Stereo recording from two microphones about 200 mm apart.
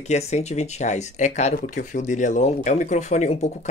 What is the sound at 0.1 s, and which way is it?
Speech, 35° left (ahead or behind).